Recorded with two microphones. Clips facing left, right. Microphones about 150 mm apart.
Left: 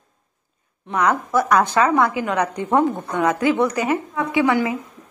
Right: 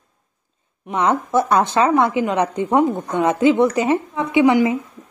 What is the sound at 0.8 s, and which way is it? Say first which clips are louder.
Speech: right 1 dB; 25° right (ahead or behind).